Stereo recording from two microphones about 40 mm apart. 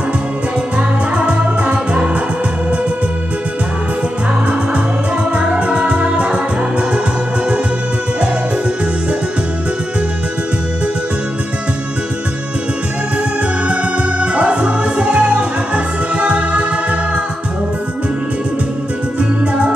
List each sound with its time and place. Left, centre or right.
1.1 s music: right
5.3 s music: right
14.2 s music: right